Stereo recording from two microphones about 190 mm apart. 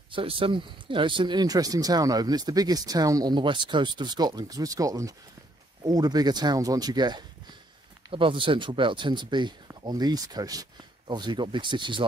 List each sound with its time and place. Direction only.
0.1 s speech: 30° right (ahead or behind)